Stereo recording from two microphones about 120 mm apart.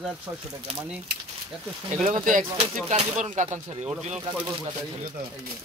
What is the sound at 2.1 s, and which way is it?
Speech, 90° right.